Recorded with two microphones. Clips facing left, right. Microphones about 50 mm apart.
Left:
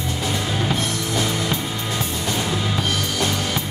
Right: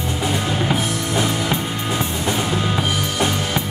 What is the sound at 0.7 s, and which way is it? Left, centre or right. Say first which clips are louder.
Music: right 2 dB; right.